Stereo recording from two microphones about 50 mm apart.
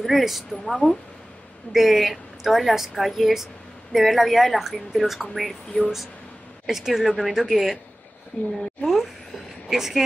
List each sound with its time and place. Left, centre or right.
0.0 s a woman's voice: centre
6.6 s a woman's voice: centre
8.3 s a woman's voice: left
9.7 s speech: centre